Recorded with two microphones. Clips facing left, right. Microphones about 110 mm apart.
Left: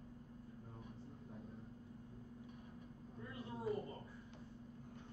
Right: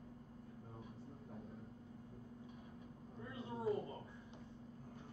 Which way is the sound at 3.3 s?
25° right (ahead or behind).